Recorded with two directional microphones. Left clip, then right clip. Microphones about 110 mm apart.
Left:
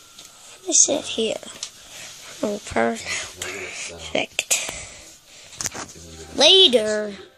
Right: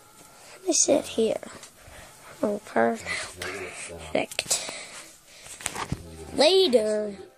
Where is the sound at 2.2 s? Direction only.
15° left (ahead or behind).